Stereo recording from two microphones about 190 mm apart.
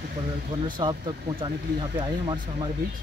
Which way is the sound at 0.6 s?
25° right (ahead or behind).